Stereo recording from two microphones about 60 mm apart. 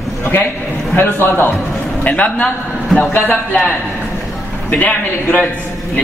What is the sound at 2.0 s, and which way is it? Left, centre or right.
A man's voice, left.